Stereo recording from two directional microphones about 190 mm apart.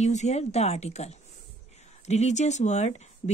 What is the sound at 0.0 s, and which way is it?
Speech, 35° left (ahead or behind).